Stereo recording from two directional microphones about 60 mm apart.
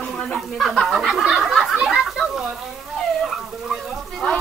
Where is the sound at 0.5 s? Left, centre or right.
Centre.